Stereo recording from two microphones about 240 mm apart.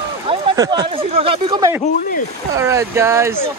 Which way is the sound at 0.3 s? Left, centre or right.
Centre.